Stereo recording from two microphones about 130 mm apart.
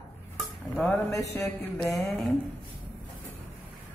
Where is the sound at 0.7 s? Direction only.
15° left (ahead or behind).